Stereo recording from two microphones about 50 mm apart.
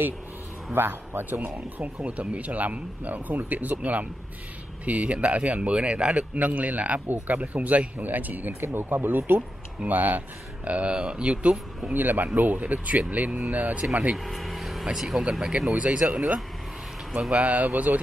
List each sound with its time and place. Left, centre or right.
0.7 s a man's voice: right
2.0 s speech: right
11.9 s speech: right
14.1 s vehicle: centre
14.9 s speech: centre; by 18.0 s right